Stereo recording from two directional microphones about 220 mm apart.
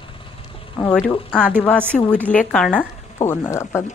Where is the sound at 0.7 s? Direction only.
20° left (ahead or behind).